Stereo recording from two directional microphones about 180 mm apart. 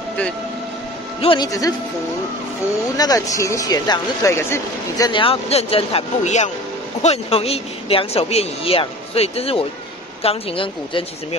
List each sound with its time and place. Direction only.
1.2 s speech: 25° left (ahead or behind)
3.0 s speech: 20° left (ahead or behind)